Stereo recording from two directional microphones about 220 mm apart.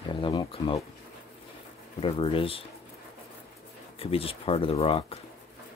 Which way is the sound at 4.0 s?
25° left (ahead or behind).